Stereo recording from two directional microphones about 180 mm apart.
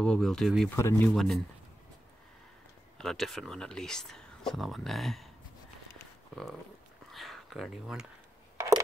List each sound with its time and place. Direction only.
0.0 s speech: 5° left (ahead or behind)
0.7 s speech: 15° left (ahead or behind)
1.1 s speech: centre (ahead or behind)
3.0 s speech: centre (ahead or behind)
7.1 s a sound: centre (ahead or behind)
8.5 s a sound: 20° right (ahead or behind)